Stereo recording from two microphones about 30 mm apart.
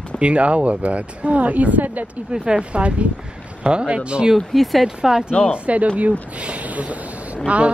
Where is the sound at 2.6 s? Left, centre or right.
Right.